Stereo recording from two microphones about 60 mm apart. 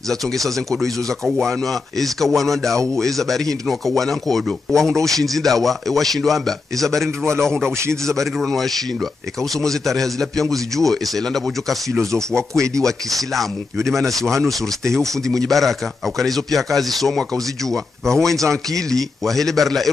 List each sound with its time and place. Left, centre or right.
0.1 s speech: centre
12.5 s speech: right
12.8 s speech: centre